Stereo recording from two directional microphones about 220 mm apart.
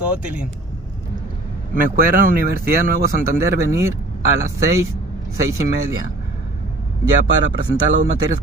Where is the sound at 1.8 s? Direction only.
40° right (ahead or behind).